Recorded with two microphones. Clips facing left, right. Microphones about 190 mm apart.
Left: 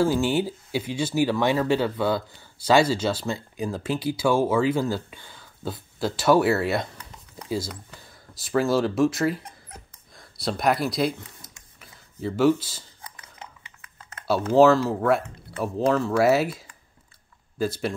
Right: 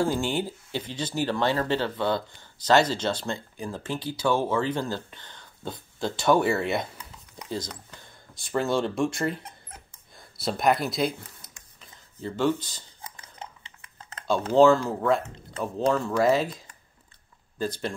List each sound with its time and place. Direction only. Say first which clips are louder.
0.0 s speech: left 4 dB; 5° left (ahead or behind)
13.0 s dog: right 2 dB; 30° right (ahead or behind)
14.5 s speech: left 2 dB; 5° left (ahead or behind)